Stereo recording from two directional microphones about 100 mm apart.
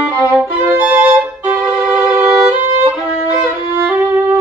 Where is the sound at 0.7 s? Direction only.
15° right (ahead or behind).